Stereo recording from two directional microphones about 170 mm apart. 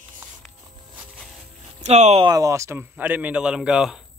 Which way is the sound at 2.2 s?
20° right (ahead or behind).